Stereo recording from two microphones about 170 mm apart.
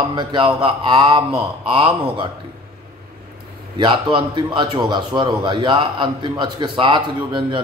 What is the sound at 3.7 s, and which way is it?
A man's voice, 30° right (ahead or behind).